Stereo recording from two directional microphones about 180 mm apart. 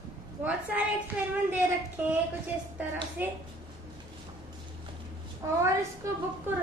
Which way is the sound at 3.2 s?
10° right (ahead or behind).